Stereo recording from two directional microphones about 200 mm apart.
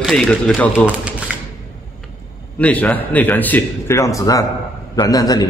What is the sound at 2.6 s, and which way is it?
A man's voice, 5° left (ahead or behind).